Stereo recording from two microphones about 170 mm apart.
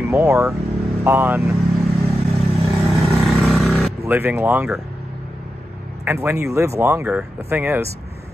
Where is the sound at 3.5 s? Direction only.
Centre (ahead or behind).